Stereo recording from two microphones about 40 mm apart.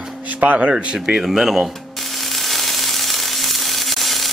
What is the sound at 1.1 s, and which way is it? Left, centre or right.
Speech, centre.